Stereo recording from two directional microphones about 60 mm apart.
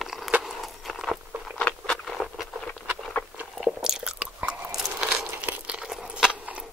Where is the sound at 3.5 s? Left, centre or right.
Centre.